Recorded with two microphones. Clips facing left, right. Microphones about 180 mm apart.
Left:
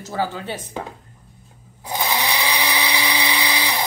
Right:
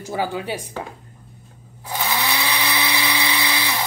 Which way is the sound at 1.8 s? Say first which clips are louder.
Left 1 dB; 15° left (ahead or behind).